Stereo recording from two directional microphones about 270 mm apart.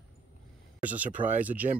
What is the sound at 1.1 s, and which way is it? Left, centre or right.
Speech, right.